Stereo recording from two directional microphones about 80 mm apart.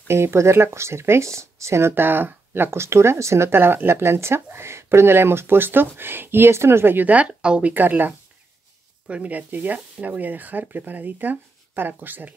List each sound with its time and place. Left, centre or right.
0.1 s speech: right